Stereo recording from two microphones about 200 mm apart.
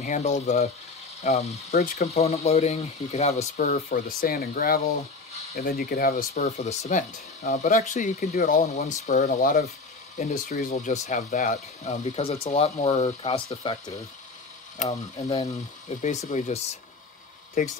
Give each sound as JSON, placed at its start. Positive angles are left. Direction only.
{"t": 0.0, "sound": "speech", "side_deg": 35}
{"t": 1.7, "sound": "speech", "side_deg": 50}
{"t": 2.1, "sound": "speech", "side_deg": 30}
{"t": 3.6, "sound": "speech", "side_deg": 45}
{"t": 6.3, "sound": "speech", "side_deg": 35}
{"t": 15.2, "sound": "speech", "side_deg": 20}
{"t": 15.9, "sound": "speech", "side_deg": 35}